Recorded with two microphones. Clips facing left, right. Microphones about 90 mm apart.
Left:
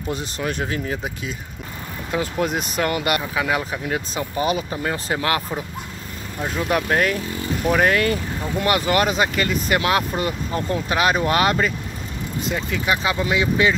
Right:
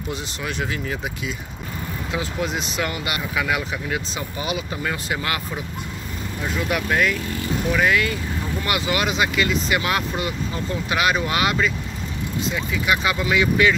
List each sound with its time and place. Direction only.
0.1 s speech: 45° left (ahead or behind)
2.1 s speech: 50° left (ahead or behind)
3.3 s speech: 35° left (ahead or behind)
6.4 s speech: 35° left (ahead or behind)